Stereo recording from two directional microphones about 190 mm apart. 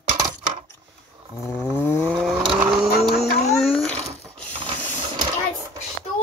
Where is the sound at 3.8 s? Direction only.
5° left (ahead or behind).